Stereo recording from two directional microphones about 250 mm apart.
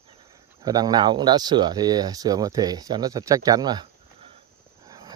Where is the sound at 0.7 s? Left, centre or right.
Centre.